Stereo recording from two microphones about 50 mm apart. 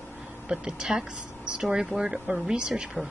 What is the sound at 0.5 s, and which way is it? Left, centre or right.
Speech, centre.